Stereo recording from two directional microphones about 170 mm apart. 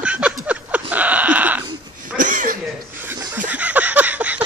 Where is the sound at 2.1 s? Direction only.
50° right (ahead or behind).